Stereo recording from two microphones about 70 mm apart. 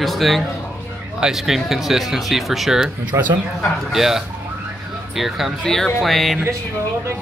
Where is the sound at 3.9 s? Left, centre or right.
Centre.